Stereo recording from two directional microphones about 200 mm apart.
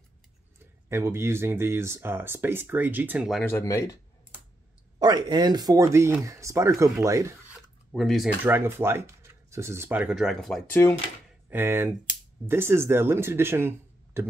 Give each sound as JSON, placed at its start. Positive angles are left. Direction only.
{"t": 0.8, "sound": "speech", "side_deg": -10}
{"t": 3.4, "sound": "speech", "side_deg": 15}
{"t": 4.9, "sound": "speech", "side_deg": -20}
{"t": 7.9, "sound": "speech", "side_deg": 0}
{"t": 8.5, "sound": "speech", "side_deg": -10}
{"t": 11.4, "sound": "speech", "side_deg": -10}